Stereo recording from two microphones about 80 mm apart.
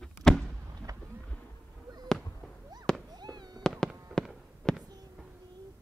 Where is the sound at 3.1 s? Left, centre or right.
Right.